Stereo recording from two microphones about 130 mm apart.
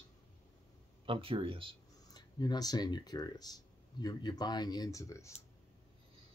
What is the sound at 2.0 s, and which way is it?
Speech, 30° left (ahead or behind).